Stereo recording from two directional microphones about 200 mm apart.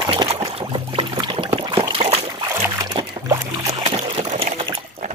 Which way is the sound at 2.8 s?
20° right (ahead or behind).